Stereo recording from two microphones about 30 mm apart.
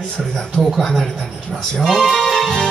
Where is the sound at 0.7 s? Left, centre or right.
Centre.